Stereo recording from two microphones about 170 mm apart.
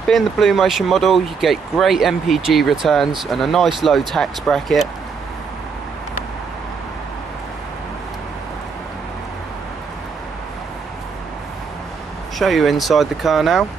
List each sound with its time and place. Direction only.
0.1 s speech: centre (ahead or behind)
12.4 s speech: centre (ahead or behind)